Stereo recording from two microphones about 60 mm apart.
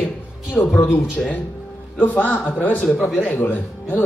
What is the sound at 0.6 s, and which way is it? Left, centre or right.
A man's voice, left.